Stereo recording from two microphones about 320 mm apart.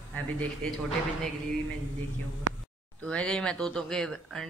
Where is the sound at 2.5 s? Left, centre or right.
Right.